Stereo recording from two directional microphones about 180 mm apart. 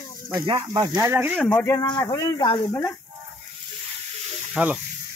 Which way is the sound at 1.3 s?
5° left (ahead or behind).